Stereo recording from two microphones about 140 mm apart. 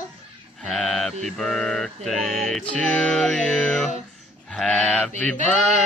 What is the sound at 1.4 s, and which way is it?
Music, 5° left (ahead or behind).